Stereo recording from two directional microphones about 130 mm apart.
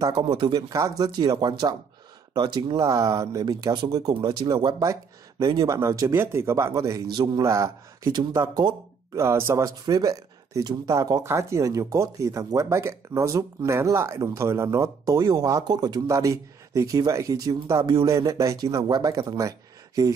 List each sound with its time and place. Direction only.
0.0 s speech: 35° right (ahead or behind)
0.6 s speech: 25° right (ahead or behind)
5.7 s speech: 25° right (ahead or behind)
8.1 s speech: 35° right (ahead or behind)
9.1 s speech: 20° right (ahead or behind)